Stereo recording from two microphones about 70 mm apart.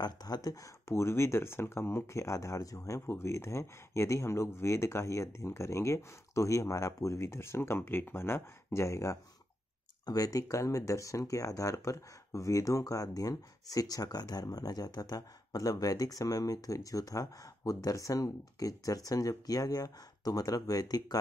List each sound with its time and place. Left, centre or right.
0.0 s speech: left
0.8 s speech: left
3.1 s speech: left
8.7 s speech: left
10.0 s speech: left